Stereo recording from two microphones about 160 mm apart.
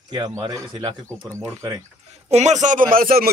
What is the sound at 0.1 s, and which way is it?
Speech, 25° right (ahead or behind).